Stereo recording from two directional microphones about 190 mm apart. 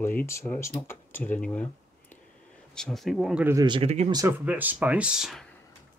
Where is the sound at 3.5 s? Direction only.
25° right (ahead or behind).